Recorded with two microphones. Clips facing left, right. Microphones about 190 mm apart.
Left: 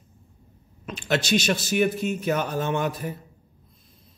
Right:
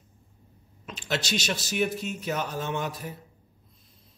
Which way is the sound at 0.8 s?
55° left (ahead or behind).